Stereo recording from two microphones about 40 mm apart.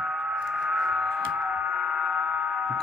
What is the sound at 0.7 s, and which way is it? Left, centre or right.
Music, centre.